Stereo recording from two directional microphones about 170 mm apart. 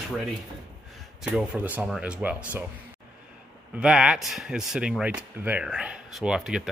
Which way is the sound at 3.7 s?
5° right (ahead or behind).